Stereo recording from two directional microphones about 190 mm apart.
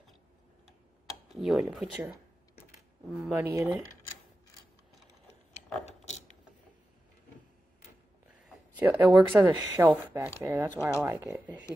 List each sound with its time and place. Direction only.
1.3 s speech: centre (ahead or behind)
3.2 s speech: 10° right (ahead or behind)
5.9 s a sound: 35° left (ahead or behind)
8.7 s speech: 10° right (ahead or behind)
9.5 s speech: 20° right (ahead or behind)